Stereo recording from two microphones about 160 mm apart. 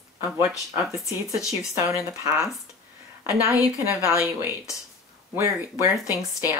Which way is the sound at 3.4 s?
15° right (ahead or behind).